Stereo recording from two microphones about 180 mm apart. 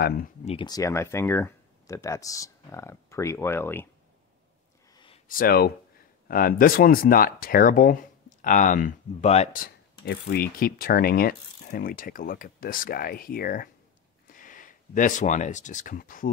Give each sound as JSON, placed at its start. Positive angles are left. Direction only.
{"t": 0.5, "sound": "speech", "side_deg": 25}
{"t": 4.9, "sound": "a sound", "side_deg": 30}
{"t": 5.3, "sound": "speech", "side_deg": 55}
{"t": 9.6, "sound": "speech", "side_deg": 65}